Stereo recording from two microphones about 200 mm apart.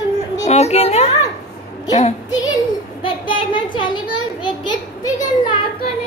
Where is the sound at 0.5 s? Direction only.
30° left (ahead or behind).